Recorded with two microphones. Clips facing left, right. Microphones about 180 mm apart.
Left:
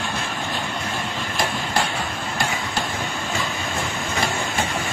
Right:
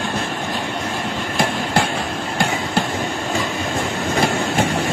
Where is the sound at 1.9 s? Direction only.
50° right (ahead or behind).